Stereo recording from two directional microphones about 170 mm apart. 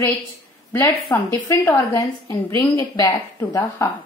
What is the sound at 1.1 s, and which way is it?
A woman's voice, 15° left (ahead or behind).